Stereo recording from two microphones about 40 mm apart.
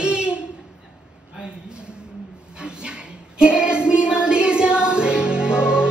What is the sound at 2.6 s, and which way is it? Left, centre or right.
Child singing, right.